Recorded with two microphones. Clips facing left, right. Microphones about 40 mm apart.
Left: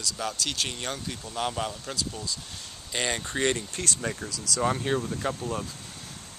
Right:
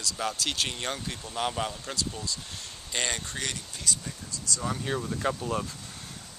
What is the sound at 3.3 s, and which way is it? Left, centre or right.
Speech, left.